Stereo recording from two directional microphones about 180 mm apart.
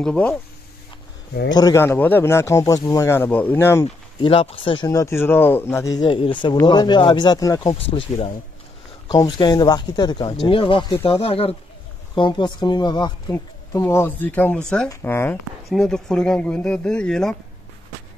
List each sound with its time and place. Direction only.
0.0 s speech: 5° left (ahead or behind)
1.5 s speech: 20° left (ahead or behind)
3.8 s speech: 30° left (ahead or behind)
4.8 s speech: 15° left (ahead or behind)
7.8 s speech: 30° left (ahead or behind); by 17.4 s 5° left (ahead or behind)